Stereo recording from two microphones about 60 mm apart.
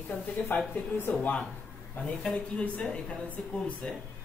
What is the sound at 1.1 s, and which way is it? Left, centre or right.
Speech, left.